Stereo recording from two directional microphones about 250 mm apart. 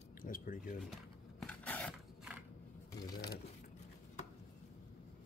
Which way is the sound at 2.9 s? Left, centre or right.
Centre.